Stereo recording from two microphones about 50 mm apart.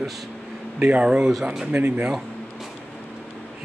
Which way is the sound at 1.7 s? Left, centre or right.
Right.